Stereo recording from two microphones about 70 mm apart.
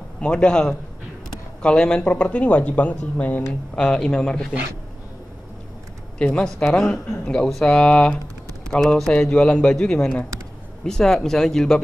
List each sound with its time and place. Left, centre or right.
0.2 s speech: centre
3.7 s speech: centre
6.1 s speech: centre